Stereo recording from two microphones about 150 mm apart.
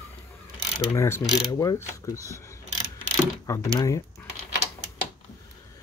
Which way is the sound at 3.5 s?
20° left (ahead or behind).